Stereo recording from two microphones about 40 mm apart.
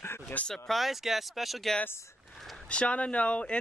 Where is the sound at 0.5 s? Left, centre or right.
Centre.